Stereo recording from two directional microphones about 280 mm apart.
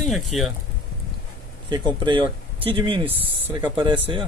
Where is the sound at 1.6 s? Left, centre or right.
Centre.